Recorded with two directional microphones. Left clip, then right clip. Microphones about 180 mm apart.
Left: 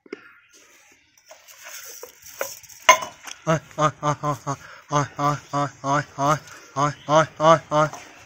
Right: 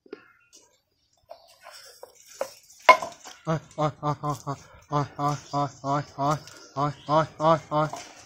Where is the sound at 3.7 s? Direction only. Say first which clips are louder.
Left 6 dB; 10° left (ahead or behind).